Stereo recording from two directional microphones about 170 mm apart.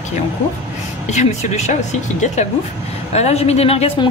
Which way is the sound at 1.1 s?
45° left (ahead or behind).